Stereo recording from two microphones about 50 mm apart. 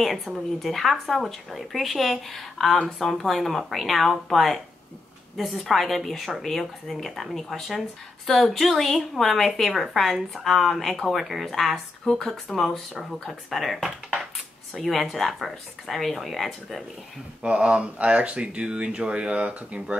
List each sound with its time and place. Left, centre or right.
0.0 s a woman's voice: centre
12.0 s a woman's voice: centre
17.4 s speech: right